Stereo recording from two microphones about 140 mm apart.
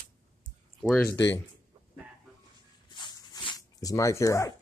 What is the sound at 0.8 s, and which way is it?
Speech, 5° left (ahead or behind).